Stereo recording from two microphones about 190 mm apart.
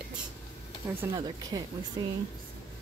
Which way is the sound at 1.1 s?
20° right (ahead or behind).